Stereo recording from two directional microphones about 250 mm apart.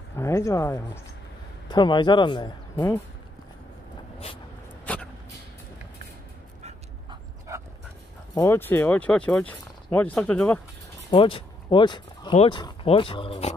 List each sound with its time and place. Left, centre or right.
0.1 s speech: centre
4.9 s vehicle: centre
8.4 s speech: centre
11.1 s speech: left